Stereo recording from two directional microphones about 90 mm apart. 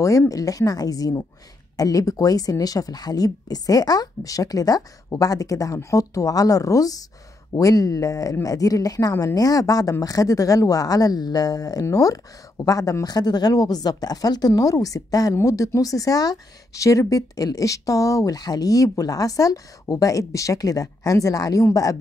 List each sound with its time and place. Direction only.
0.3 s a woman's voice: 40° left (ahead or behind)